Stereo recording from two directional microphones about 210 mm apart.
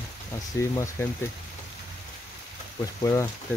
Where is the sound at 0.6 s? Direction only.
15° left (ahead or behind).